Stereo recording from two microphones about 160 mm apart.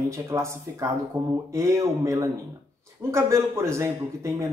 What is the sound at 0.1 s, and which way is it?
A man's voice, 20° right (ahead or behind).